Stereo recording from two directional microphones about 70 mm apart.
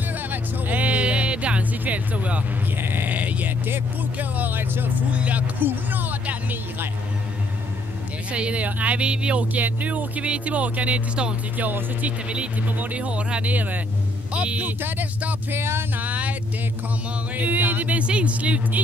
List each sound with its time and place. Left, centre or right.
0.3 s music: right
2.8 s sheep: right
5.1 s speech: centre
8.3 s speech: centre
16.0 s a sound: right
17.4 s speech: right